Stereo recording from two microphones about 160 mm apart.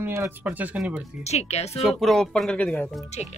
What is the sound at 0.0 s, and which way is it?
Speech, 15° right (ahead or behind).